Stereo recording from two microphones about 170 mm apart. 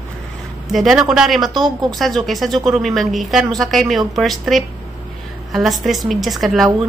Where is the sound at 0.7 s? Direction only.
Centre (ahead or behind).